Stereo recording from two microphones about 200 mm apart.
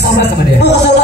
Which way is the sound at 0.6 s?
55° left (ahead or behind).